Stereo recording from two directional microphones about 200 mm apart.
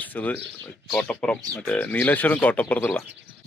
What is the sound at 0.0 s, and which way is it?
Speech, 10° left (ahead or behind).